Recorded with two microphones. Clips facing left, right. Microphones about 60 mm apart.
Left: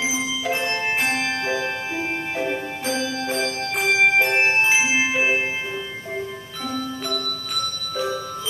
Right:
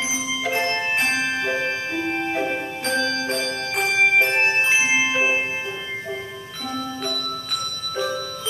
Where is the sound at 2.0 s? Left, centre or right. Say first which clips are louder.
Right 3 dB; centre.